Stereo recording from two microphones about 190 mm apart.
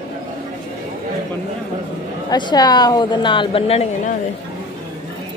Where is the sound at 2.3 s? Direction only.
20° left (ahead or behind).